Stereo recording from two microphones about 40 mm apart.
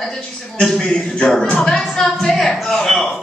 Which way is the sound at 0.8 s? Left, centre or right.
Left.